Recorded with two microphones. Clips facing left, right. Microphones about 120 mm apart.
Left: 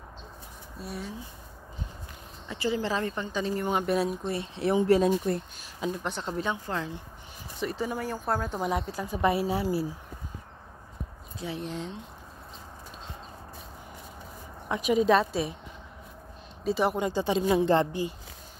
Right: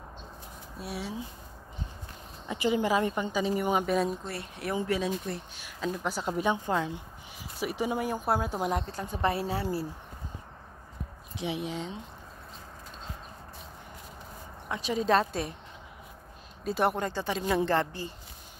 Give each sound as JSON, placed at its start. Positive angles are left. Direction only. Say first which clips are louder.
{"t": 0.7, "sound": "speech", "louder": "right 1 dB", "side_deg": -5}
{"t": 2.4, "sound": "a woman's voice", "louder": "right 2 dB", "side_deg": -15}
{"t": 3.8, "sound": "speech", "louder": "left 1 dB", "side_deg": 5}
{"t": 4.3, "sound": "speech", "louder": "left 7 dB", "side_deg": 25}
{"t": 4.9, "sound": "speech", "louder": "left 7 dB", "side_deg": 45}
{"t": 5.9, "sound": "a woman's voice", "louder": "right 1 dB", "side_deg": -5}
{"t": 8.8, "sound": "a woman's voice", "louder": "left 3 dB", "side_deg": 10}
{"t": 11.4, "sound": "a woman's voice", "louder": "right 2 dB", "side_deg": -15}
{"t": 11.7, "sound": "speech", "louder": "even", "side_deg": 0}
{"t": 14.7, "sound": "speech", "louder": "left 4 dB", "side_deg": 20}
{"t": 15.1, "sound": "speech", "louder": "left 2 dB", "side_deg": 5}
{"t": 16.6, "sound": "speech", "louder": "left 2 dB", "side_deg": 0}
{"t": 17.1, "sound": "a woman's voice", "louder": "left 4 dB", "side_deg": 20}